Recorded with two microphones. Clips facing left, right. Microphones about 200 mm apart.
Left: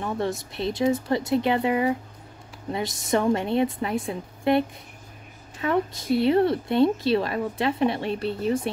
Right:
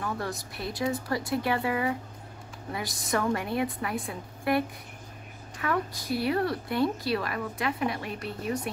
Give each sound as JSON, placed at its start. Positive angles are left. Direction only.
{"t": 0.0, "sound": "a woman's voice", "side_deg": 25}